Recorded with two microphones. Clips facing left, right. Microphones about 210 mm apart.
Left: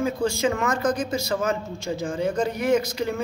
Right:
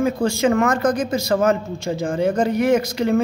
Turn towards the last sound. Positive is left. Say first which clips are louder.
# right 4 dB
turn(degrees=-75)  # may be behind; listen again after turning